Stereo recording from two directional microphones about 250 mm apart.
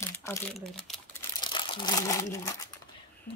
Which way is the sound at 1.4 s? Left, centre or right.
Centre.